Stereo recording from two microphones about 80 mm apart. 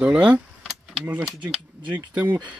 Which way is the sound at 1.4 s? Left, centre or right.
Right.